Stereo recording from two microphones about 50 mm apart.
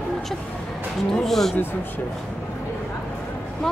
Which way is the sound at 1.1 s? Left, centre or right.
Centre.